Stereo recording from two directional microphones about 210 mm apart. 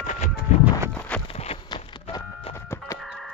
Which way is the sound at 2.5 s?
10° left (ahead or behind).